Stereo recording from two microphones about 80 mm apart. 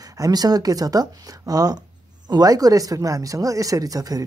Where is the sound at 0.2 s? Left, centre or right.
Right.